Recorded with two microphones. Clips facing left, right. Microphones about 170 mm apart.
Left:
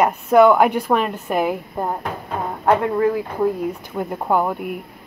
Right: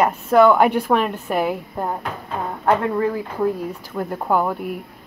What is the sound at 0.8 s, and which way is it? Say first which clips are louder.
A woman's voice: even; centre (ahead or behind).